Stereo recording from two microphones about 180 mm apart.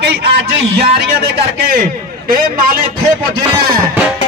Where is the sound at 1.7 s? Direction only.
55° right (ahead or behind).